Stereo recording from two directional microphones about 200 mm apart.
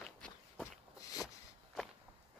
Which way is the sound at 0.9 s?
15° left (ahead or behind).